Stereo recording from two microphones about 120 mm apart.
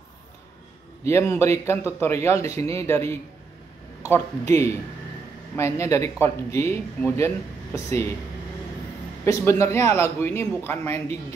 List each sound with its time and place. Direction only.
1.0 s a man's voice: 25° left (ahead or behind)
9.2 s a man's voice: 25° left (ahead or behind)